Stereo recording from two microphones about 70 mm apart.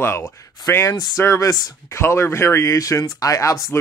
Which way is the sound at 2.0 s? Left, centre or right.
Left.